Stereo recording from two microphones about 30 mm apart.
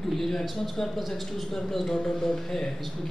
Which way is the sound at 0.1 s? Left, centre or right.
Centre.